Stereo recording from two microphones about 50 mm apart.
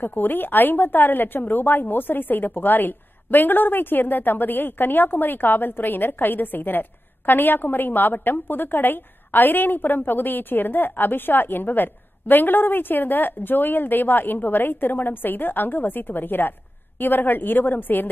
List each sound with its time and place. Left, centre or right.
0.0 s a woman's voice: left